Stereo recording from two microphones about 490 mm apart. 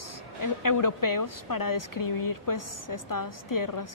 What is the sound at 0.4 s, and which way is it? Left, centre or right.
A woman's voice, left.